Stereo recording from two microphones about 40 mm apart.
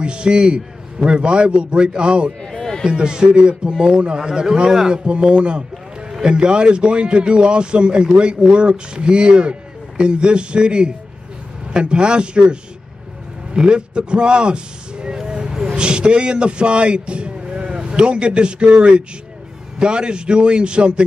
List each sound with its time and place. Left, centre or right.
0.0 s a man's voice: right
2.5 s a sound: centre
2.9 s a man's voice: right
5.0 s a man's voice: right